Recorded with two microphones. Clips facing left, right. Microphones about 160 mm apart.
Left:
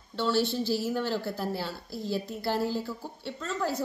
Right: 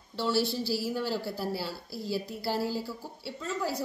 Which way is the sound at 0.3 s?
5° right (ahead or behind).